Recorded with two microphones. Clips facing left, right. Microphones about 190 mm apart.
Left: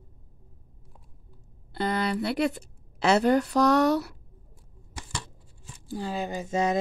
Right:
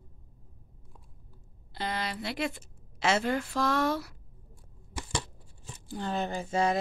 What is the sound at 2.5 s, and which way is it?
Speech, 40° left (ahead or behind).